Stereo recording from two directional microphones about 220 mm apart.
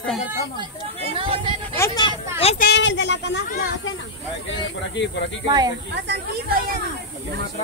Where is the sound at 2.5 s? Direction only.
50° left (ahead or behind).